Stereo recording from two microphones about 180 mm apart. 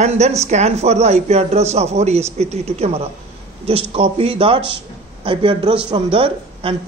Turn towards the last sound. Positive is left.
turn(degrees=-30)  # may be behind; listen again after turning